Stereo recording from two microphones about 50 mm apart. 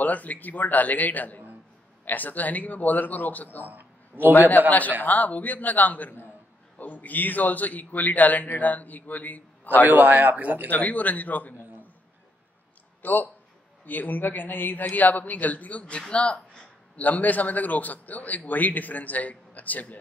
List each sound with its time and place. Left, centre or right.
0.0 s a man's voice: left
3.6 s a sound: right
4.5 s a man's voice: left
9.8 s a man's voice: right
10.7 s a man's voice: left
13.0 s a man's voice: left
16.9 s a man's voice: left